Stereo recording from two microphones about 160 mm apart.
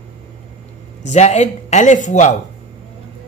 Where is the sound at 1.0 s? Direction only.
45° left (ahead or behind).